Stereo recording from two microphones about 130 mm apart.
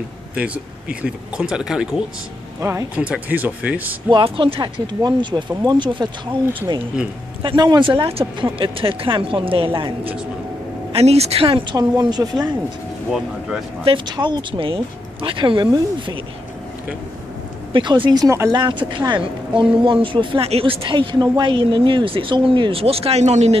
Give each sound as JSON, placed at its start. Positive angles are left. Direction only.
{"t": 0.4, "sound": "speech", "side_deg": -10}
{"t": 2.6, "sound": "speech", "side_deg": -20}
{"t": 4.1, "sound": "a woman's voice", "side_deg": -45}
{"t": 7.4, "sound": "a woman's voice", "side_deg": -35}
{"t": 13.8, "sound": "a woman's voice", "side_deg": -35}
{"t": 17.7, "sound": "a woman's voice", "side_deg": -40}
{"t": 18.6, "sound": "a woman's voice", "side_deg": -35}